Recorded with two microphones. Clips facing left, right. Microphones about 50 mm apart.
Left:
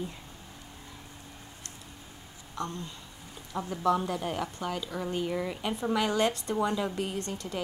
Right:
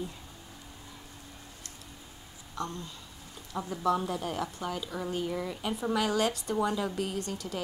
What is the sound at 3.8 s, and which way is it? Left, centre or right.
A woman's voice, centre.